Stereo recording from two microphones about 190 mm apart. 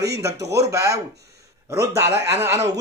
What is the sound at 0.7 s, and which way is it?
A man's voice, 15° right (ahead or behind).